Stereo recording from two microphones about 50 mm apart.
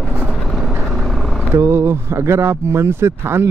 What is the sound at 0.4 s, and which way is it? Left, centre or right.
Vehicle, centre.